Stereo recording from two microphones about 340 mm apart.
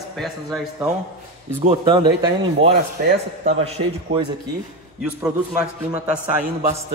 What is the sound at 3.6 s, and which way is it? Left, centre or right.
Speech, centre.